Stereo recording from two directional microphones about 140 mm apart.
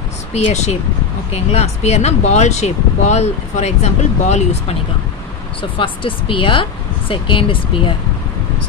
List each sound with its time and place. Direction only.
0.3 s speech: 50° left (ahead or behind)
5.6 s speech: 40° left (ahead or behind)